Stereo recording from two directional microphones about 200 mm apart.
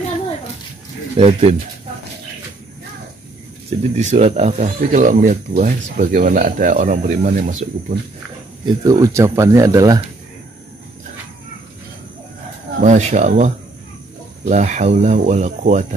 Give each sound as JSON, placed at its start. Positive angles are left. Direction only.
{"t": 1.1, "sound": "speech", "side_deg": -35}
{"t": 3.9, "sound": "speech", "side_deg": -35}
{"t": 8.6, "sound": "speech", "side_deg": -15}
{"t": 12.8, "sound": "speech", "side_deg": -35}